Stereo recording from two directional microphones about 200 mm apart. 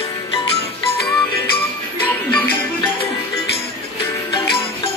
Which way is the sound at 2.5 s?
25° left (ahead or behind).